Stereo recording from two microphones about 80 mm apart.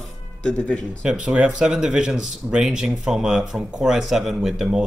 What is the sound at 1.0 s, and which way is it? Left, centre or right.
Speech, centre.